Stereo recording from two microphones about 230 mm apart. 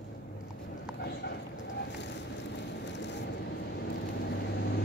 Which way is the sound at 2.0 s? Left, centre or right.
Left.